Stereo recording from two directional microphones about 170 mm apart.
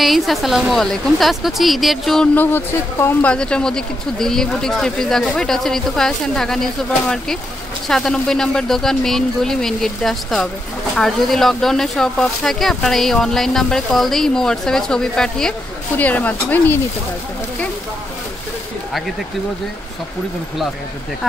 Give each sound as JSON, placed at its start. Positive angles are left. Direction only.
{"t": 0.0, "sound": "a woman's voice", "side_deg": 0}